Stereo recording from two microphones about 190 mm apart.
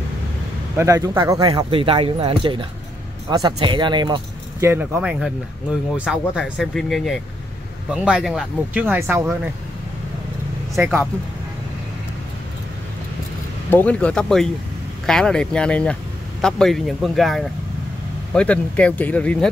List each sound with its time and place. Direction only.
0.7 s speech: 15° right (ahead or behind)
10.8 s speech: 10° right (ahead or behind)
13.7 s speech: 10° left (ahead or behind)